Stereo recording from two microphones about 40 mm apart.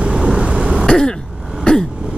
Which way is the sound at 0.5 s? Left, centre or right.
Right.